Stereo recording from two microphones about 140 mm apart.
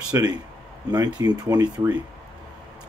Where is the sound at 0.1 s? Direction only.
30° right (ahead or behind).